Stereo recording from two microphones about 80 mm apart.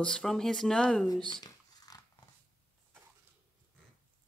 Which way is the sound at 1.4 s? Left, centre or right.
Left.